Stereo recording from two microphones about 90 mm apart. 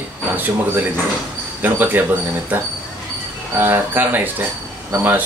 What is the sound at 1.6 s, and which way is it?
Speech, 20° right (ahead or behind).